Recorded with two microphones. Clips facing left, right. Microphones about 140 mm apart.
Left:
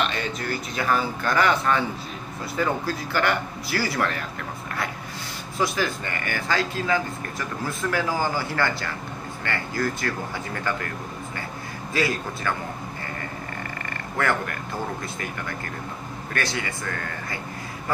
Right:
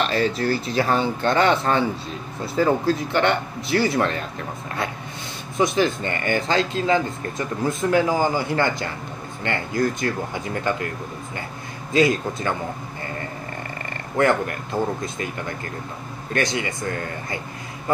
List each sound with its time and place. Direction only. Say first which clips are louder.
0.0 s speech: right 6 dB; 35° right (ahead or behind)
5.6 s speech: right 5 dB; 20° right (ahead or behind)
11.9 s speech: right 7 dB; 20° right (ahead or behind)
14.1 s speech: right 6 dB; 25° right (ahead or behind)
16.3 s speech: right 5 dB; 20° right (ahead or behind)